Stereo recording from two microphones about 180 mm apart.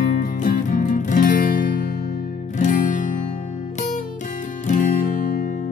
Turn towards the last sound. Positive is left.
turn(degrees=50)  # may be behind; listen again after turning